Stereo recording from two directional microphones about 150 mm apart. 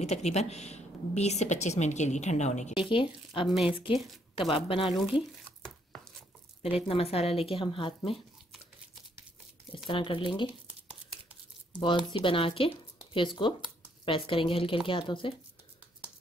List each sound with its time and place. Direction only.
0.0 s a woman's voice: 45° left (ahead or behind)
2.9 s speech: 35° left (ahead or behind)
3.4 s speech: centre (ahead or behind)
4.4 s speech: 35° left (ahead or behind)
4.8 s speech: 5° right (ahead or behind)
6.6 s speech: 40° left (ahead or behind)
9.8 s speech: 35° left (ahead or behind)
12.1 s speech: 35° left (ahead or behind)